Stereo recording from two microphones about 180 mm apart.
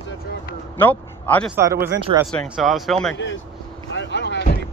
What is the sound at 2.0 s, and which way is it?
Speech, 30° right (ahead or behind).